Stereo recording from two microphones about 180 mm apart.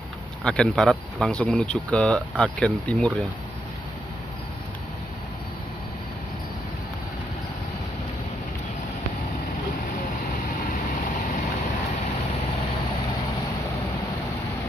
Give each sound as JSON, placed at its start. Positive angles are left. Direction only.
{"t": 0.4, "sound": "speech", "side_deg": 5}